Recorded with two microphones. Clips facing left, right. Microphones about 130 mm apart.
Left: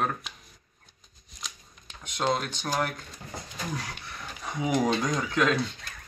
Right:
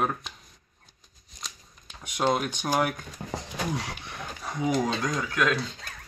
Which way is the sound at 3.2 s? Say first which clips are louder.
Right 8 dB; 40° right (ahead or behind).